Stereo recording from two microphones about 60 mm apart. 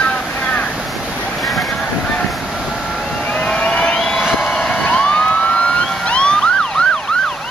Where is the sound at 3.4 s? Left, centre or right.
Centre.